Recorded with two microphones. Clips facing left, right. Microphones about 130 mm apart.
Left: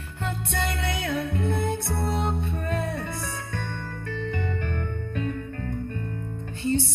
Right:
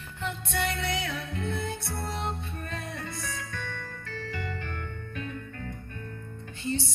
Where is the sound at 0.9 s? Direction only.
55° left (ahead or behind).